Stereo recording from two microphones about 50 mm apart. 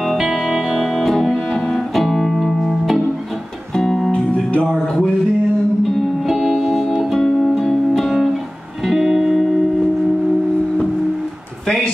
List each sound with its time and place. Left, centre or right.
0.0 s music: centre
4.1 s music: left
6.2 s music: centre